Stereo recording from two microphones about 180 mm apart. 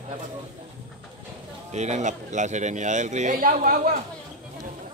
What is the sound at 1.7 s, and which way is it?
A man's voice, 40° right (ahead or behind).